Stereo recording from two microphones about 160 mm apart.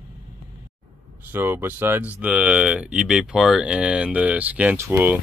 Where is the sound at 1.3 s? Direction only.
15° right (ahead or behind).